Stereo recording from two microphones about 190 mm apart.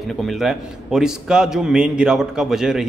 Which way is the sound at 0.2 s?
Centre (ahead or behind).